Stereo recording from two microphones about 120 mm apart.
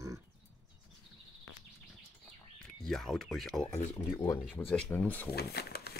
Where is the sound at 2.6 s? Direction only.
5° left (ahead or behind).